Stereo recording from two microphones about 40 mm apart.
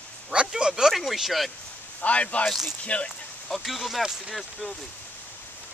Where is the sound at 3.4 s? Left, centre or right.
Centre.